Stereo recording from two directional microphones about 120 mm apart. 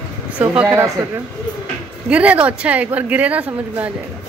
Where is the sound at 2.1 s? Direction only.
10° right (ahead or behind).